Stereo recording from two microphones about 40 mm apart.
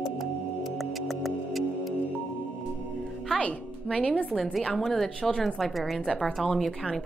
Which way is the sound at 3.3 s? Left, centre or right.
Centre.